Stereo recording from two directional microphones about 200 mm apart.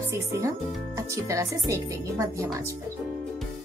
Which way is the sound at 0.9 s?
15° right (ahead or behind).